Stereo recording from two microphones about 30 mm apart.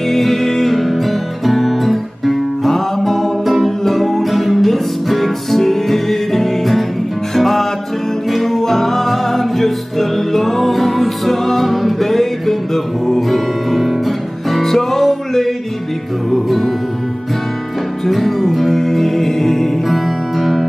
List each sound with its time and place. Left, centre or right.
0.1 s music: centre
11.6 s music: centre
18.0 s music: centre